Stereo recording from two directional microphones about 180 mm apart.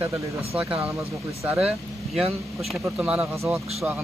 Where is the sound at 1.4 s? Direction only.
10° right (ahead or behind).